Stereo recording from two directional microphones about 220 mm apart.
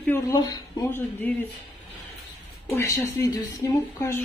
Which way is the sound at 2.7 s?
15° left (ahead or behind).